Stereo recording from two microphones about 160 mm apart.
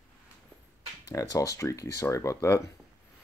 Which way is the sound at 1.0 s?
20° left (ahead or behind).